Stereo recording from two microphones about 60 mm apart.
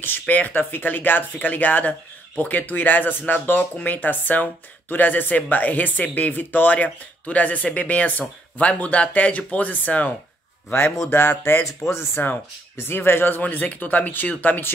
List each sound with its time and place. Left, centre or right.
0.0 s speech: left
11.1 s speech: left